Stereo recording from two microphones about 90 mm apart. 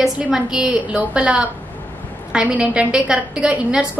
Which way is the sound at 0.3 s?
5° right (ahead or behind).